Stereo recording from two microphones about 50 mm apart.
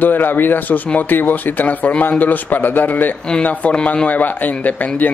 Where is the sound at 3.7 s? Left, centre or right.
Left.